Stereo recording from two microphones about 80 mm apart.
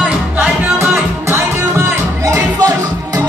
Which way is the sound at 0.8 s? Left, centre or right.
Right.